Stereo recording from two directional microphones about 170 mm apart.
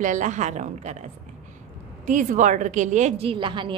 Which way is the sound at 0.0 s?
45° right (ahead or behind).